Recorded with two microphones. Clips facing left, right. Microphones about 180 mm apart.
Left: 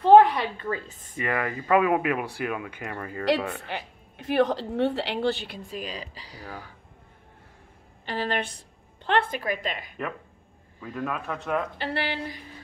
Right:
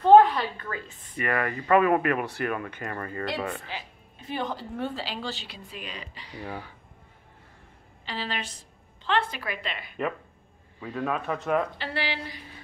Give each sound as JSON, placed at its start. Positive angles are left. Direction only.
{"t": 0.0, "sound": "a sound", "side_deg": 15}
{"t": 0.7, "sound": "speech", "side_deg": 30}
{"t": 1.1, "sound": "speech", "side_deg": 15}
{"t": 3.6, "sound": "a woman's voice", "side_deg": 65}
{"t": 8.0, "sound": "a woman's voice", "side_deg": 50}
{"t": 10.8, "sound": "speech", "side_deg": 0}
{"t": 11.8, "sound": "speech", "side_deg": 55}